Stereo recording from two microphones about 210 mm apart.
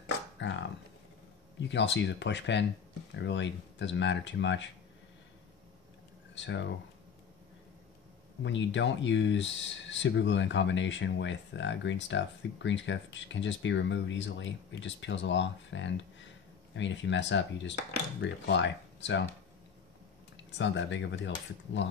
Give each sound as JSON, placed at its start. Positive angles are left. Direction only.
{"t": 0.0, "sound": "a sound", "side_deg": 60}
{"t": 1.6, "sound": "speech", "side_deg": 60}
{"t": 6.3, "sound": "speech", "side_deg": 60}
{"t": 8.4, "sound": "speech", "side_deg": 60}
{"t": 20.5, "sound": "speech", "side_deg": 60}